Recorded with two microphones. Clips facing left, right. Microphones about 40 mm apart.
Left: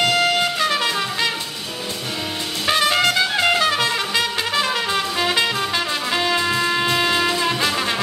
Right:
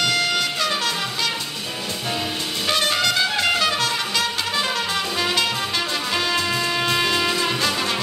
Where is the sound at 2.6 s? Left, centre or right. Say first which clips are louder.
Left 4 dB; left.